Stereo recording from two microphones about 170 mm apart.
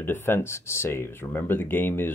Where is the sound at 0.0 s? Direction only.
15° left (ahead or behind).